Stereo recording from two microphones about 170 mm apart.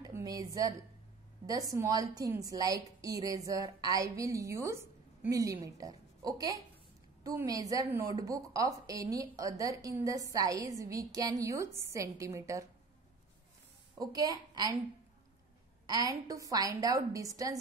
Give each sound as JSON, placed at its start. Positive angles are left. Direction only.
{"t": 0.0, "sound": "a sound", "side_deg": -20}
{"t": 1.4, "sound": "a woman's voice", "side_deg": -20}
{"t": 13.9, "sound": "a woman's voice", "side_deg": -20}
{"t": 15.9, "sound": "a woman's voice", "side_deg": -20}